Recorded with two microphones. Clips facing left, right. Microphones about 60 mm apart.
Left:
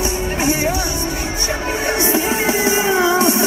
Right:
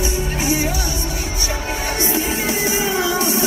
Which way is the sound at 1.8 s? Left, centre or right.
Left.